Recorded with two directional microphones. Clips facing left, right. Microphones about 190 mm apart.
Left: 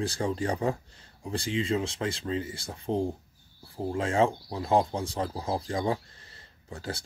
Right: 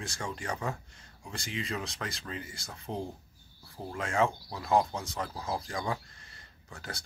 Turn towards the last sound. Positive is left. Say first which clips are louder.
# left 7 dB
turn(degrees=30)  # may be behind; listen again after turning